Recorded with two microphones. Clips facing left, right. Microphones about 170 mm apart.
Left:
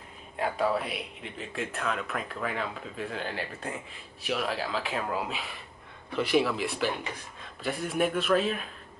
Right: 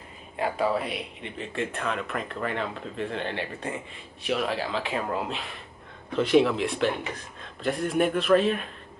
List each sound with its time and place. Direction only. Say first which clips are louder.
0.4 s speech: right 2 dB; centre (ahead or behind)